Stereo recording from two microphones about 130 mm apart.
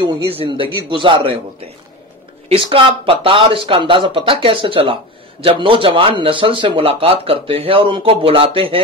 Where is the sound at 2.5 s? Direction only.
45° right (ahead or behind).